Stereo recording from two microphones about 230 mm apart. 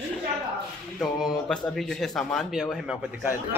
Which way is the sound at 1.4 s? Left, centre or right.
Centre.